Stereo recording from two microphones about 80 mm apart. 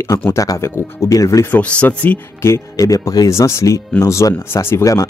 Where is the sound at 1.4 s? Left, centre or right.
Centre.